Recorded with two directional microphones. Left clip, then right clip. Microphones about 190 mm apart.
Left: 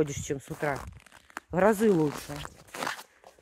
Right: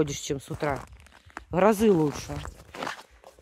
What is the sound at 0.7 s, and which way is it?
Tearing, 55° left (ahead or behind).